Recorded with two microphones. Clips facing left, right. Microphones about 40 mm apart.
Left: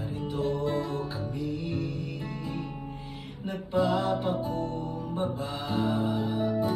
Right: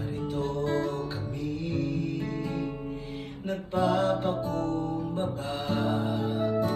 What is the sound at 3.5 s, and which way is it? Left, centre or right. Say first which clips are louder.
Music: even; left.